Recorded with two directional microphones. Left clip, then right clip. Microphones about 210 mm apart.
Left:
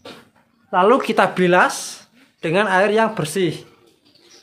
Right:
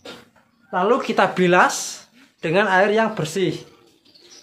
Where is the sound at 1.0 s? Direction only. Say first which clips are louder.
Left 1 dB; 15° left (ahead or behind).